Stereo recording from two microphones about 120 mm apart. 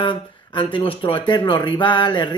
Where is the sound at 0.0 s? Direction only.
45° left (ahead or behind).